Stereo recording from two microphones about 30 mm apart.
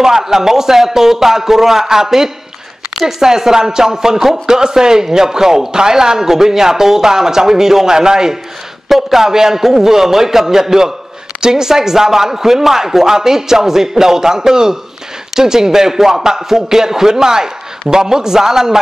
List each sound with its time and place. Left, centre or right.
0.0 s speech: centre
8.8 s speech: centre